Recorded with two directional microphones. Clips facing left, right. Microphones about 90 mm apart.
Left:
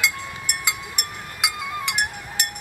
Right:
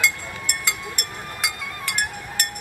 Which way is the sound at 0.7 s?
15° left (ahead or behind).